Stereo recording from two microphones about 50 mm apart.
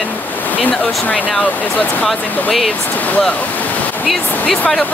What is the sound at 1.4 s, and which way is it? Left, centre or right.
Speech, left.